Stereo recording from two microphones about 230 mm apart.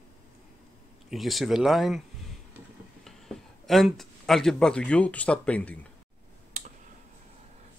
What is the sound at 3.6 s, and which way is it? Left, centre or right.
Speech, centre.